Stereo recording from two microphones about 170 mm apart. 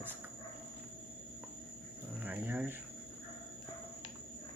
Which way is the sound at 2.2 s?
10° right (ahead or behind).